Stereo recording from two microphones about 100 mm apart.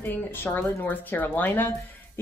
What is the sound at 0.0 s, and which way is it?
A woman's voice, 20° left (ahead or behind).